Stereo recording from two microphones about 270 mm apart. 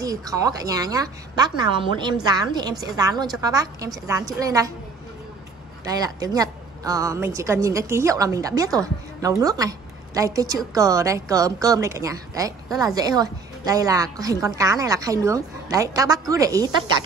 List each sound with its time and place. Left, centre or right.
0.0 s a woman's voice: centre
5.9 s a woman's voice: centre